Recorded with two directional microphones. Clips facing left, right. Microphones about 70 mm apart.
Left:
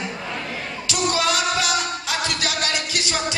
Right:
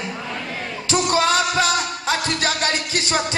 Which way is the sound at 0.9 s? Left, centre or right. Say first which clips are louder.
Right 4 dB; right.